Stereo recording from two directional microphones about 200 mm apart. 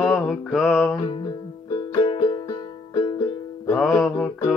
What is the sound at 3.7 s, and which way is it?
Music, centre (ahead or behind).